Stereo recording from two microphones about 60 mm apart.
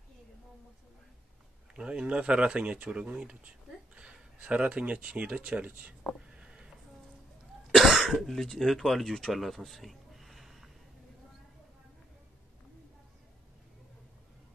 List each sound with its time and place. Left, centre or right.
1.8 s speech: centre
6.3 s a sound: centre
7.7 s speech: centre